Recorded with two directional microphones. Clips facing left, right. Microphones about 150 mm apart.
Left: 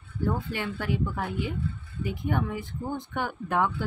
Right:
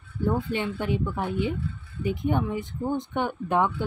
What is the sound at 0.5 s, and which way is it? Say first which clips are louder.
Speech: right 3 dB; 20° right (ahead or behind).